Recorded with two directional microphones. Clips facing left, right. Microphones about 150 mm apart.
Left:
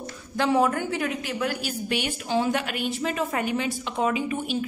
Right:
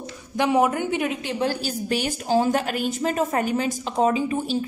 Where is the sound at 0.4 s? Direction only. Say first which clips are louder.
Right 2 dB; 15° right (ahead or behind).